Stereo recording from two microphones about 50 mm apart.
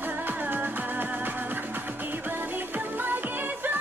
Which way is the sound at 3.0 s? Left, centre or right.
Right.